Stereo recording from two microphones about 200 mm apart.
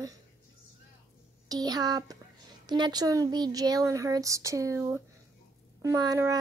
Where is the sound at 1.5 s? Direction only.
20° right (ahead or behind).